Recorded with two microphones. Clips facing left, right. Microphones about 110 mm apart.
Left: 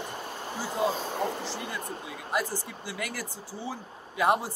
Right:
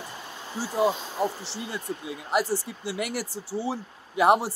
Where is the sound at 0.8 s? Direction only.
20° right (ahead or behind).